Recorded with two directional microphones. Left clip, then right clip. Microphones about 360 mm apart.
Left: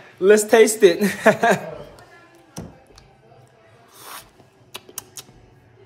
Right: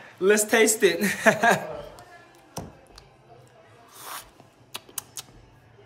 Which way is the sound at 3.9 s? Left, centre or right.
Centre.